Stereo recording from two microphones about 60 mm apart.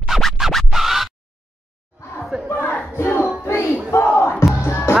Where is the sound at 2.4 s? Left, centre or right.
Left.